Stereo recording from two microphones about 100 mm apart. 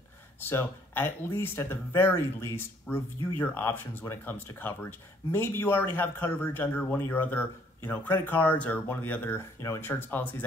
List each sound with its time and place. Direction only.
0.4 s a man's voice: 20° left (ahead or behind)